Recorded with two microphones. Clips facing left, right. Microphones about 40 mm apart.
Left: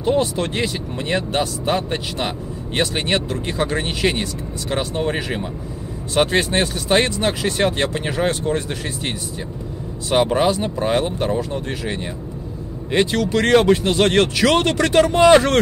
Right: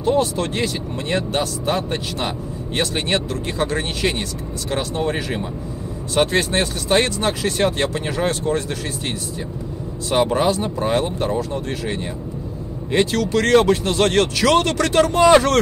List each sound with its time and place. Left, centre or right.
0.0 s speech: left